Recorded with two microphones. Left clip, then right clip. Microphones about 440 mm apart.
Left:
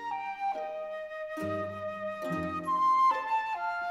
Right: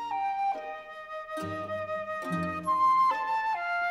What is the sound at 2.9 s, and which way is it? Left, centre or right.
Flute, right.